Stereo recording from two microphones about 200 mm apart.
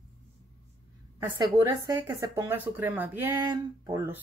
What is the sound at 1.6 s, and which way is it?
Speech, 15° right (ahead or behind).